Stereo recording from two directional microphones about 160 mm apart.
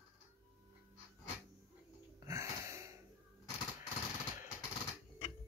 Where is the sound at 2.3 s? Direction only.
20° right (ahead or behind).